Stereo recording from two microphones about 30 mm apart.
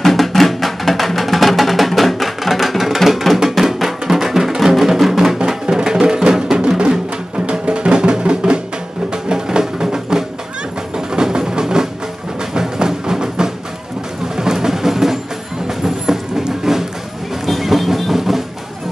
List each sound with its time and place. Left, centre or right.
0.0 s music: centre
7.3 s music: right; by 15.1 s centre
15.8 s vehicle: centre
17.5 s music: centre